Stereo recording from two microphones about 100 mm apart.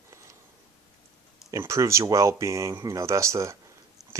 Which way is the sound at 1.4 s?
30° right (ahead or behind).